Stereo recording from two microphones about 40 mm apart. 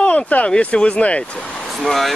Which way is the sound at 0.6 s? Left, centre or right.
Left.